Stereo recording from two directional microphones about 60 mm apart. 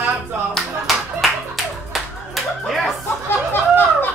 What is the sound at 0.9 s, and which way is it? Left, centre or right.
Clapping, centre.